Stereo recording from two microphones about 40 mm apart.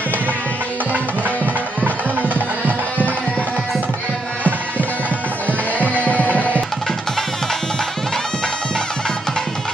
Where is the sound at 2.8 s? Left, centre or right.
Left.